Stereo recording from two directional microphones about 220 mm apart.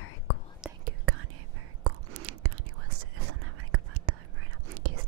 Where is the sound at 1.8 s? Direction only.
90° right.